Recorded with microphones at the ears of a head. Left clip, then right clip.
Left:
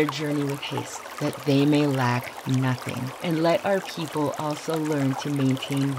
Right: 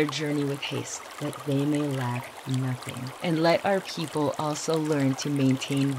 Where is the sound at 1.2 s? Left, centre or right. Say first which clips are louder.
Left 6 dB; left.